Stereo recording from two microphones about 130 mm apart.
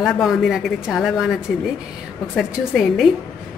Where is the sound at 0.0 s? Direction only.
Centre (ahead or behind).